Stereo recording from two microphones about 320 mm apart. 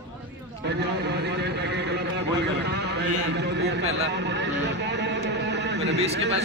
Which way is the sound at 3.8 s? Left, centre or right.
Centre.